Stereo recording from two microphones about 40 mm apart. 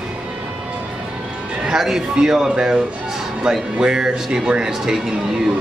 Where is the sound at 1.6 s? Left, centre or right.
Centre.